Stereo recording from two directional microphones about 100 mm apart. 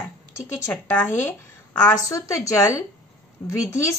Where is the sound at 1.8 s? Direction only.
30° left (ahead or behind).